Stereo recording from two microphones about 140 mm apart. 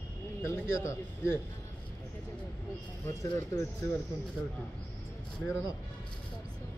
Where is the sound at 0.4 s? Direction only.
20° left (ahead or behind).